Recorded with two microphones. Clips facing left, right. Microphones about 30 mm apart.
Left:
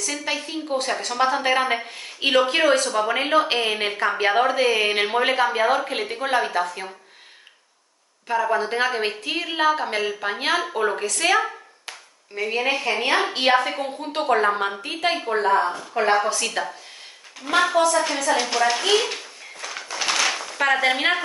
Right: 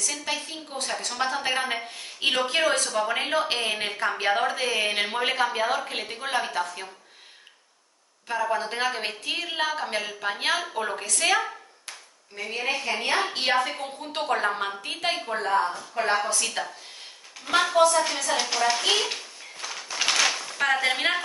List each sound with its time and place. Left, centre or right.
0.0 s a woman's voice: centre
8.3 s a woman's voice: centre
12.4 s a woman's voice: left
14.3 s a woman's voice: centre
15.1 s a woman's voice: left
15.6 s speech: left
15.9 s a woman's voice: left
16.3 s a woman's voice: centre
17.9 s a woman's voice: left
20.0 s a sound: centre
20.2 s a sound: centre